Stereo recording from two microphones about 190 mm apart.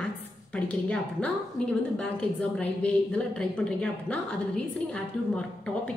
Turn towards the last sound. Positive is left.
turn(degrees=5)  # may be behind; listen again after turning